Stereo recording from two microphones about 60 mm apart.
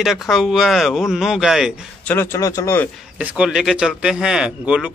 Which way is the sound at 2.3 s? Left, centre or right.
Left.